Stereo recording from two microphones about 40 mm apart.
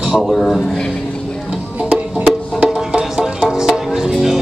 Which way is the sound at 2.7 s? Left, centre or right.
Centre.